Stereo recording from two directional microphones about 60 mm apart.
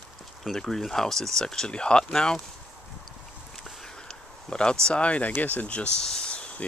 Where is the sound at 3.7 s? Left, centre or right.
Centre; by 5.3 s left.